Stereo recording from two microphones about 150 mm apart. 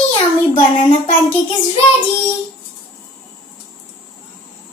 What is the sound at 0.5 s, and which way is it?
Child singing, 50° left (ahead or behind).